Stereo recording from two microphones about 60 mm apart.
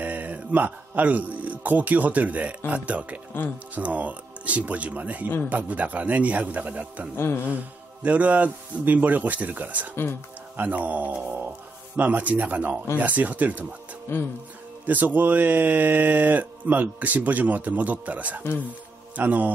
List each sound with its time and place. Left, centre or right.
0.0 s a man's voice: right
7.2 s speech: left
7.5 s speech: right
14.1 s speech: left
14.9 s speech: right